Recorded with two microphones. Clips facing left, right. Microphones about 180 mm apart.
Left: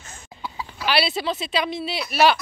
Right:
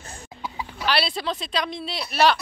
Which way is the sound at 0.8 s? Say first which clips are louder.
Left 2 dB; 5° left (ahead or behind).